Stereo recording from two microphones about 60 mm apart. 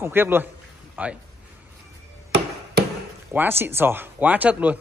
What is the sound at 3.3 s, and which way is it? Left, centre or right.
Speech, right.